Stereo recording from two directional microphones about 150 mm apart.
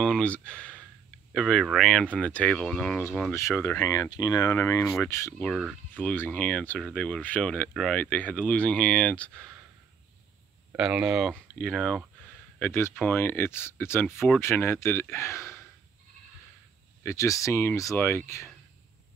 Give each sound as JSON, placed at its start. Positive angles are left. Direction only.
{"t": 0.0, "sound": "speech", "side_deg": 5}
{"t": 10.8, "sound": "speech", "side_deg": -5}
{"t": 17.0, "sound": "speech", "side_deg": 20}